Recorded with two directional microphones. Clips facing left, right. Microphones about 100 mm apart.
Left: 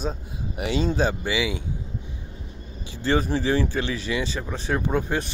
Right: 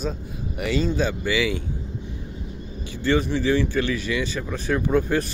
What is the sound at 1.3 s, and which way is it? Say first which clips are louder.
Speech: right 3 dB; 20° left (ahead or behind).